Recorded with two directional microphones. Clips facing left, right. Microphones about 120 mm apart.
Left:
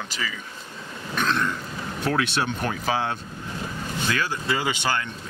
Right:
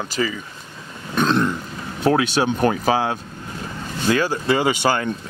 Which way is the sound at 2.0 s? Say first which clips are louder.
Right 7 dB; 30° right (ahead or behind).